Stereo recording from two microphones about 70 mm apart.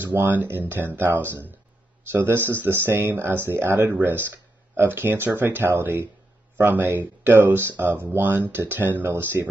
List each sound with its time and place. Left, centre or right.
0.0 s speech: right